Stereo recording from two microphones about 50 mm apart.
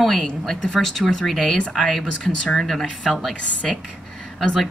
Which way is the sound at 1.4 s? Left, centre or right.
Centre.